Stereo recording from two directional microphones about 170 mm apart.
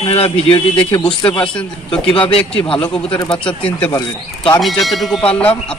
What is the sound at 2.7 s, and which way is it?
Speech, 5° left (ahead or behind).